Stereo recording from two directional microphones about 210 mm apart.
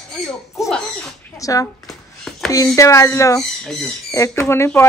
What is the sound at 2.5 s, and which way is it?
Speech, 15° left (ahead or behind).